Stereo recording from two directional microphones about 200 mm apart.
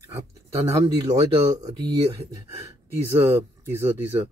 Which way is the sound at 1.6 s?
20° right (ahead or behind).